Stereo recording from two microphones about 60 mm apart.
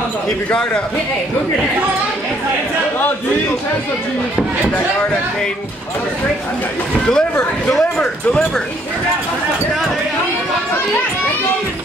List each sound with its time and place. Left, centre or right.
7.1 s speech: centre